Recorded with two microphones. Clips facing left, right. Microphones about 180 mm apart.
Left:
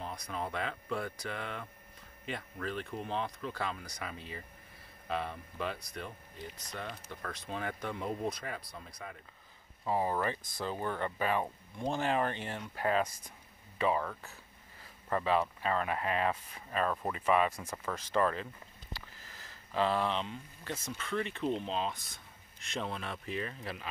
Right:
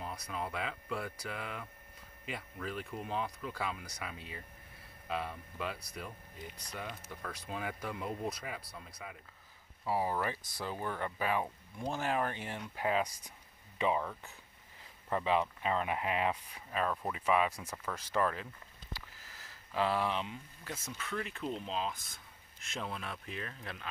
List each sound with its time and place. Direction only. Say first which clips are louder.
0.0 s speech: left 1 dB; 5° right (ahead or behind)
17.6 s speech: left 2 dB; 10° left (ahead or behind)
17.9 s speech: left 2 dB; 10° right (ahead or behind)